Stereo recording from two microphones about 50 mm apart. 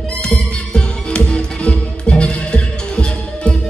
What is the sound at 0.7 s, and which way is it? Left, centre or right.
Music, centre.